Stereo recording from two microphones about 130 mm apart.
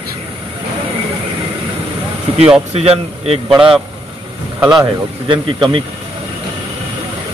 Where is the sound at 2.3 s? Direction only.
50° right (ahead or behind).